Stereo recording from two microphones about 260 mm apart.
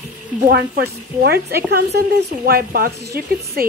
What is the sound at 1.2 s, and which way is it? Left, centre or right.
Speech, right.